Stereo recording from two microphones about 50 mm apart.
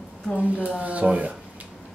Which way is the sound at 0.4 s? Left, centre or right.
Right.